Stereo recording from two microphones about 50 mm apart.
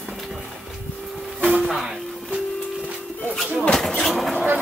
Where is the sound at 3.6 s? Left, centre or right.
Centre.